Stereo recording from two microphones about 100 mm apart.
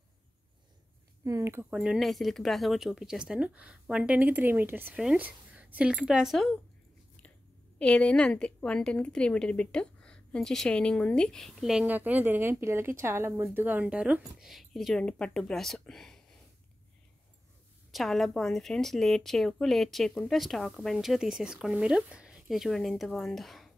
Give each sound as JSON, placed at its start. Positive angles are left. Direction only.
{"t": 1.2, "sound": "speech", "side_deg": -30}
{"t": 1.7, "sound": "a woman's voice", "side_deg": -5}
{"t": 7.8, "sound": "a woman's voice", "side_deg": 10}
{"t": 11.8, "sound": "a woman's voice", "side_deg": -15}
{"t": 17.9, "sound": "a woman's voice", "side_deg": 0}